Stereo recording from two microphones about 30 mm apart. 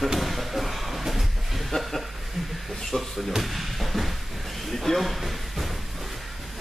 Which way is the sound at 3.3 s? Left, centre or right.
Centre.